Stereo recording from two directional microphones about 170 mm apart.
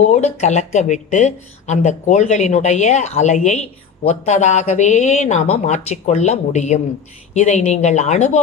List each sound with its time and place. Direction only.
0.0 s speech: 40° left (ahead or behind)